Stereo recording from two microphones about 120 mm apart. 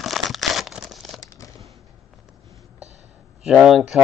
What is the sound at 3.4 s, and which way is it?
Speech, 5° right (ahead or behind).